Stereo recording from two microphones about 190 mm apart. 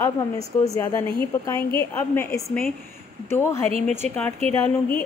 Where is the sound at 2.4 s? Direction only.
Centre (ahead or behind).